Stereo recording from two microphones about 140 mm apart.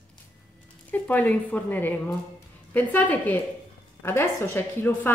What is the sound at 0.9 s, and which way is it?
A woman's voice, 10° left (ahead or behind).